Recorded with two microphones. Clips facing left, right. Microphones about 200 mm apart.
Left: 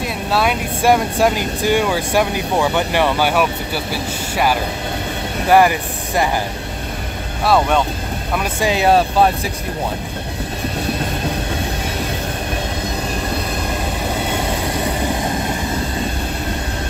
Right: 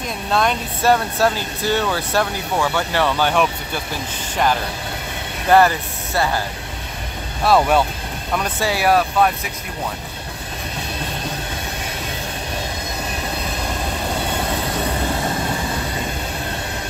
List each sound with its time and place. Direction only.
0.0 s speech: 5° left (ahead or behind)
7.4 s speech: 5° right (ahead or behind)
8.4 s speech: 15° left (ahead or behind)